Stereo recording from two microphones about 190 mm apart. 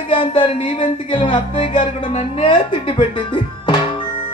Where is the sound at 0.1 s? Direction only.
25° left (ahead or behind).